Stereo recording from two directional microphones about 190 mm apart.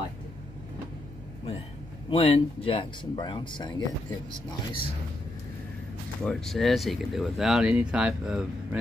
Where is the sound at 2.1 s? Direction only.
30° left (ahead or behind).